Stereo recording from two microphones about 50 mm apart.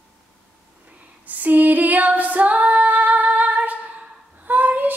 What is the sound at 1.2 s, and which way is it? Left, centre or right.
Female singing, right.